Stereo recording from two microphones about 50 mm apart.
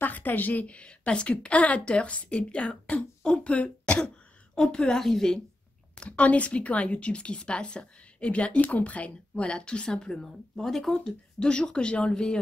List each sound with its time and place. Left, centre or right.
0.0 s a woman's voice: left; by 5.4 s centre
5.9 s a woman's voice: left